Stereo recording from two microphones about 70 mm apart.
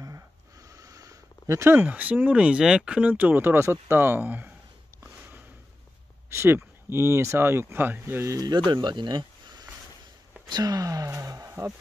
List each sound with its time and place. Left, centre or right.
0.7 s a sound: right
1.6 s speech: right
1.9 s speech: right
3.1 s speech: right
6.3 s speech: right
8.3 s speech: right
8.8 s a sound: right
10.5 s speech: right